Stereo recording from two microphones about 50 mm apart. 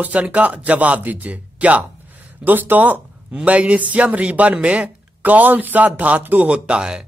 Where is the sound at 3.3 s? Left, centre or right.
Right.